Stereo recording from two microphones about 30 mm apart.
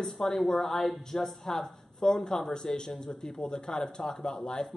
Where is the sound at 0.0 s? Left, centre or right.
Centre.